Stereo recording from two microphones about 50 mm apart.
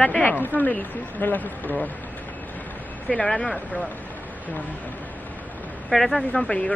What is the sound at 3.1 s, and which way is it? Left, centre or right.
Speech, centre.